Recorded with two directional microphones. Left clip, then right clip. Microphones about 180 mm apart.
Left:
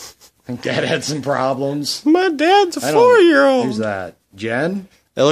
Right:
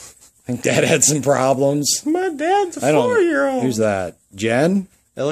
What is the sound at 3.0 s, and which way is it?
Speech, 55° left (ahead or behind).